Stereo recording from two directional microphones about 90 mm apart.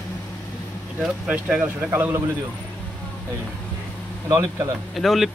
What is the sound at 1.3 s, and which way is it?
Speech, 15° right (ahead or behind).